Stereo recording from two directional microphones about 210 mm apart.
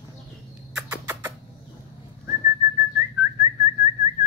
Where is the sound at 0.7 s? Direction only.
10° right (ahead or behind).